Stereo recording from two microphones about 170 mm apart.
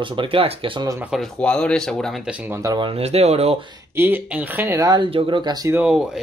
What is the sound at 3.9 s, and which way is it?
Speech, 10° right (ahead or behind).